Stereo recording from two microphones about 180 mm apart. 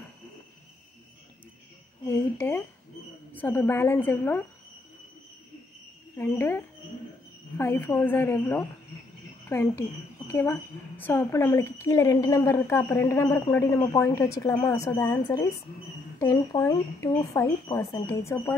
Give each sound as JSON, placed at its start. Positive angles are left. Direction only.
{"t": 2.0, "sound": "a woman's voice", "side_deg": 10}
{"t": 6.1, "sound": "a woman's voice", "side_deg": 15}